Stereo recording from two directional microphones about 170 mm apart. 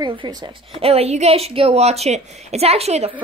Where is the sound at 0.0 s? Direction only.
30° right (ahead or behind).